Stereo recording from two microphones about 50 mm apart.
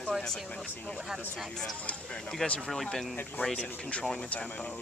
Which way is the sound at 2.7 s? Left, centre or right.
Centre.